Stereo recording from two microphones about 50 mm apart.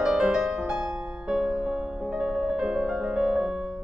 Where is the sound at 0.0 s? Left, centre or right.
Centre.